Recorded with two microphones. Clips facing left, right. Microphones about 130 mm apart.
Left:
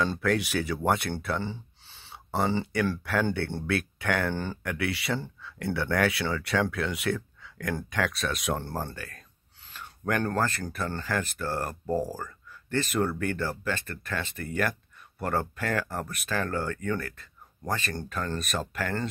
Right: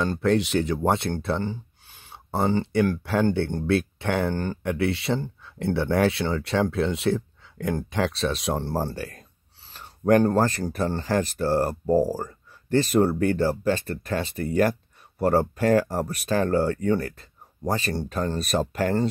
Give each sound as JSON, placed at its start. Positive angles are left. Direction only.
{"t": 0.0, "sound": "speech", "side_deg": -20}
{"t": 2.3, "sound": "speech", "side_deg": -20}
{"t": 4.4, "sound": "speech", "side_deg": -15}
{"t": 4.7, "sound": "speech", "side_deg": -25}